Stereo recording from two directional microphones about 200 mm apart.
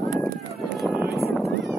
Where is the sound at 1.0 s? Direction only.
50° right (ahead or behind).